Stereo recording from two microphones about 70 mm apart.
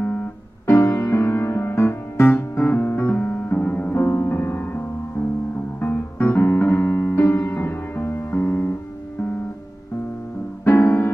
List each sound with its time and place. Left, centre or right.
0.0 s piano: left
0.7 s music: left; by 3.9 s centre
3.9 s music: left
5.8 s piano: left
10.6 s music: left